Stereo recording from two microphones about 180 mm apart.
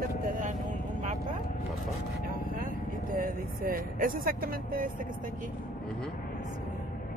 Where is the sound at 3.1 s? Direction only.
55° right (ahead or behind).